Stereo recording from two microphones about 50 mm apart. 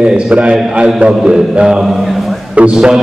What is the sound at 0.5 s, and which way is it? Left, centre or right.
A man's voice, centre.